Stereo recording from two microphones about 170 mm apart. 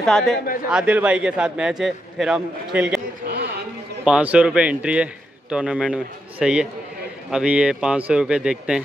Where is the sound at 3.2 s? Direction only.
70° right (ahead or behind).